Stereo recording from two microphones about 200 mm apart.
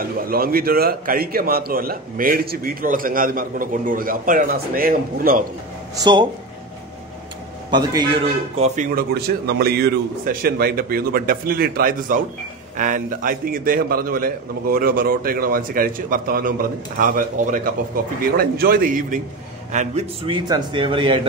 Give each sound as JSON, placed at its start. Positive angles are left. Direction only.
{"t": 0.0, "sound": "a man's voice", "side_deg": -45}
{"t": 6.1, "sound": "a man's voice", "side_deg": -20}
{"t": 7.7, "sound": "a man's voice", "side_deg": -20}
{"t": 8.5, "sound": "speech", "side_deg": -35}
{"t": 9.1, "sound": "a man's voice", "side_deg": -50}